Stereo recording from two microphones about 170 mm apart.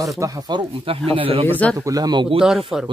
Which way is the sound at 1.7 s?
20° right (ahead or behind).